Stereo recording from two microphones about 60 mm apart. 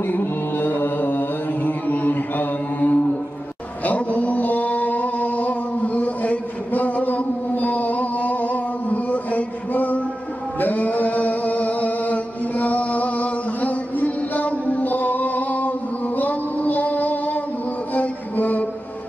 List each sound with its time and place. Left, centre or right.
0.0 s mantra: left
3.8 s a sound: left
10.6 s singing: left
16.2 s music: left